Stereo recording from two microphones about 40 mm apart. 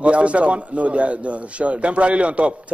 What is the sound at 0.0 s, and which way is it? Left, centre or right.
A man's voice, right.